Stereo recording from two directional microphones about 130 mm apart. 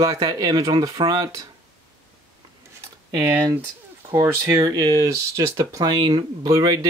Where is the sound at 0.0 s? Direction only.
30° right (ahead or behind).